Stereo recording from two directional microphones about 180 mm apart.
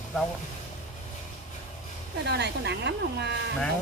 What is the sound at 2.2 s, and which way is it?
Speech, 70° right (ahead or behind).